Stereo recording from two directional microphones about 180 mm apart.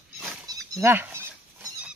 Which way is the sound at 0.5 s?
15° right (ahead or behind).